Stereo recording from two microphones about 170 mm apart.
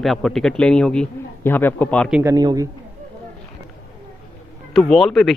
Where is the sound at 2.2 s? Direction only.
20° right (ahead or behind).